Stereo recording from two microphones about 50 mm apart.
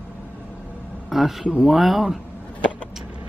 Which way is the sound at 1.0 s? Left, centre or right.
Centre.